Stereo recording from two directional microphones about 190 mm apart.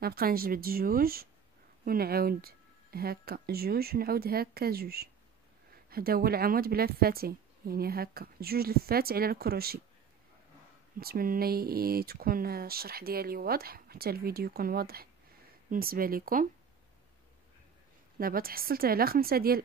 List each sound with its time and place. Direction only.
0.0 s speech: 55° right (ahead or behind)
11.0 s speech: 50° right (ahead or behind)
18.1 s speech: 50° right (ahead or behind)